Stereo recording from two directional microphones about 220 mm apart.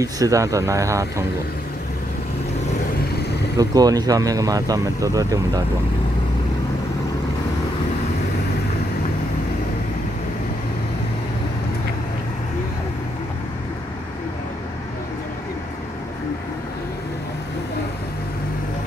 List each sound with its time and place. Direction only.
0.0 s speech: 15° right (ahead or behind)
3.5 s speech: 15° right (ahead or behind)